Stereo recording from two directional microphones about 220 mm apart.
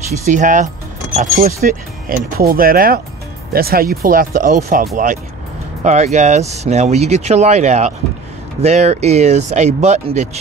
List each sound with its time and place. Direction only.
0.3 s speech: 35° right (ahead or behind)